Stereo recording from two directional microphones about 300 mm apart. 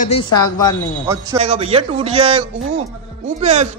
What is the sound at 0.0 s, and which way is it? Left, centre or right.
Speech, centre.